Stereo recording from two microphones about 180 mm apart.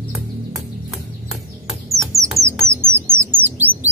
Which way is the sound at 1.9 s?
15° right (ahead or behind).